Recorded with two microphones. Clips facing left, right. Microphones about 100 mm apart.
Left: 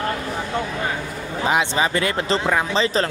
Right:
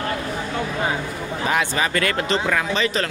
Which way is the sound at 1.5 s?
20° left (ahead or behind).